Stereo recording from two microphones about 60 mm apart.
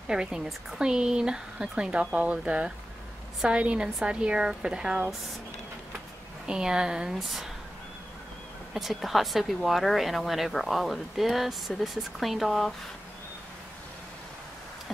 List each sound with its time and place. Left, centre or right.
0.1 s speech: centre
6.4 s speech: centre
8.7 s speech: centre